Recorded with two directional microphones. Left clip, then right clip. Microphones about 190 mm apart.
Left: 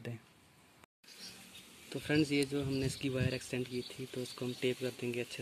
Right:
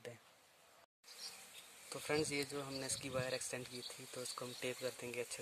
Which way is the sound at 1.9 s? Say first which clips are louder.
Left 6 dB; 25° right (ahead or behind).